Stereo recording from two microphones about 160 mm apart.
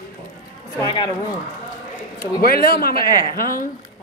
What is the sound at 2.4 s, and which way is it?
A man's voice, 70° left (ahead or behind).